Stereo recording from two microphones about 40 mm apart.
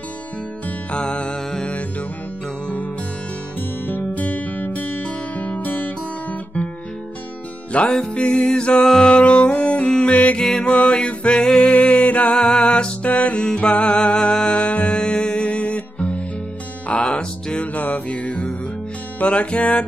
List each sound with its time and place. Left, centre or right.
0.7 s music: left
3.8 s music: left
7.7 s music: left
12.4 s music: left